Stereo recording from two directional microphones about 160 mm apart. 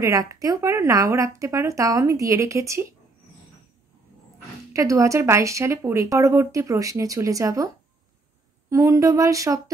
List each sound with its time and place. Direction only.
0.0 s speech: 20° right (ahead or behind)
4.7 s speech: 20° right (ahead or behind)